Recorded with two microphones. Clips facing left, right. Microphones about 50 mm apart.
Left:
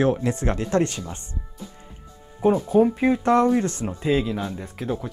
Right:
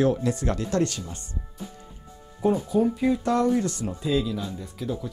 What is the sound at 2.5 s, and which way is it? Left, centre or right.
Speech, left.